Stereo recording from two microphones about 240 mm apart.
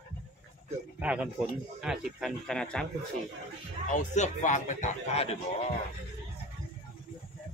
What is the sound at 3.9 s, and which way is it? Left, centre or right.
A man's voice, left.